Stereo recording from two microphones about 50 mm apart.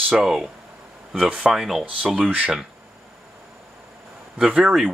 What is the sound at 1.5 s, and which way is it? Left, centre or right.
Speech, centre.